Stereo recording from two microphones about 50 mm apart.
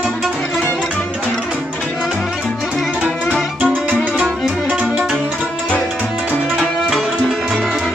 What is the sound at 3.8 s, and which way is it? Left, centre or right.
Music, right.